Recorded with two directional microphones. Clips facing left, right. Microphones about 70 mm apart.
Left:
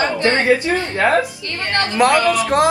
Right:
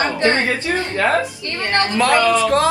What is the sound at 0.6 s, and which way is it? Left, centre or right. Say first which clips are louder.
Speech: left 1 dB; left.